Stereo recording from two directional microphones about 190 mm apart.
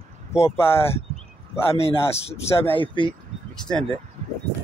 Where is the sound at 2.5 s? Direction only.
10° left (ahead or behind).